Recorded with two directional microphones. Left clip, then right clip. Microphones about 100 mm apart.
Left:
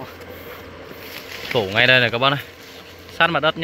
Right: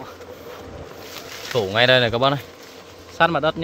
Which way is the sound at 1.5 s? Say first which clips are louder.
Left 1 dB; 80° right.